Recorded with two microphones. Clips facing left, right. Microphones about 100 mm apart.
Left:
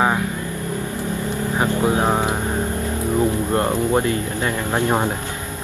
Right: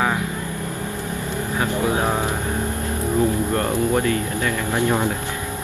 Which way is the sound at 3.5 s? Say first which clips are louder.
Left 2 dB; 25° left (ahead or behind).